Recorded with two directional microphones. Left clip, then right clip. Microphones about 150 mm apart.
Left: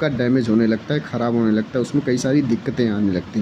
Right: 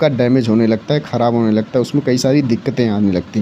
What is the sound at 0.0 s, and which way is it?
Speech, 45° right (ahead or behind).